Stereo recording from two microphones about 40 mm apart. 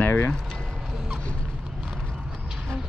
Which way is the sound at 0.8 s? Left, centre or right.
Centre.